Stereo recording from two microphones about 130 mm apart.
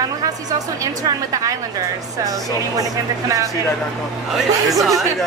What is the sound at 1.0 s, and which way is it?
Speech, 25° right (ahead or behind).